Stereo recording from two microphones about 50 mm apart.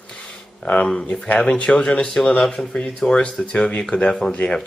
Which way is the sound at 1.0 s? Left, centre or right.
Left.